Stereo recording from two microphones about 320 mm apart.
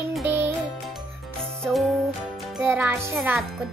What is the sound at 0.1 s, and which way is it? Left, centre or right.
Music, centre.